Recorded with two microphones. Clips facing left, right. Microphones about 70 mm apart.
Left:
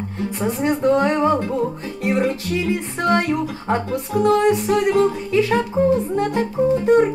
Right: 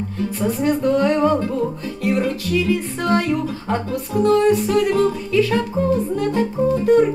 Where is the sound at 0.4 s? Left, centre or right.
Left.